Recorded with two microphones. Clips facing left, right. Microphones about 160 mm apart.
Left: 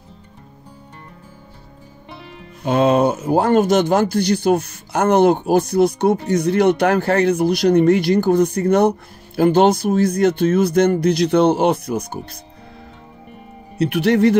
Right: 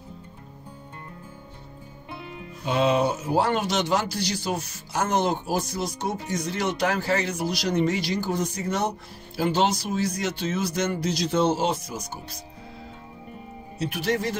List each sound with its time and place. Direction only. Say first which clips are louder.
2.6 s speech: left 7 dB; 55° left (ahead or behind)
13.7 s speech: left 11 dB; 65° left (ahead or behind)